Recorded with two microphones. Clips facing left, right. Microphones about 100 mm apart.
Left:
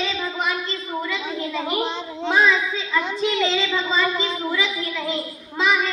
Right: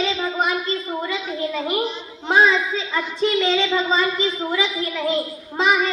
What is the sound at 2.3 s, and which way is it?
Speech, 35° right (ahead or behind).